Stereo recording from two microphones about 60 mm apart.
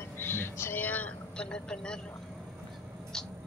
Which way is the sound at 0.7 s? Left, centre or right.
Left.